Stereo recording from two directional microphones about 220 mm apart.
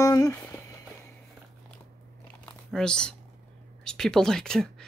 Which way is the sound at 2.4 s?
5° left (ahead or behind).